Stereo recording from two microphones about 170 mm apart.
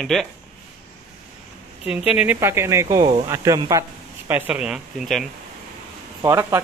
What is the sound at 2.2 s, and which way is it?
Speech, 10° right (ahead or behind).